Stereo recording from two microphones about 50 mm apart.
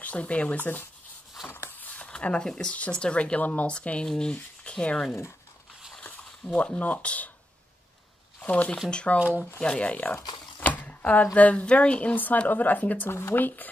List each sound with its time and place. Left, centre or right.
0.0 s speech: left
2.0 s speech: centre
6.0 s a sound: left
8.4 s speech: left
12.2 s speech: left